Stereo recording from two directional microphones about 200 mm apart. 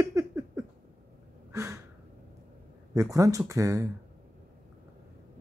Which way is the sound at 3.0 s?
15° right (ahead or behind).